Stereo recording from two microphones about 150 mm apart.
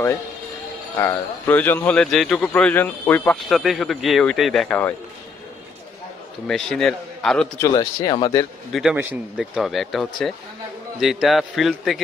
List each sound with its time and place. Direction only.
0.9 s a man's voice: 15° left (ahead or behind)
3.4 s speech: centre (ahead or behind)
6.4 s speech: 5° left (ahead or behind)
7.5 s speech: 20° left (ahead or behind)
8.7 s speech: centre (ahead or behind)